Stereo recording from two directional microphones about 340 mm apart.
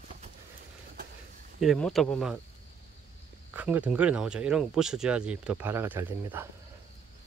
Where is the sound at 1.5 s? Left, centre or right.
Centre.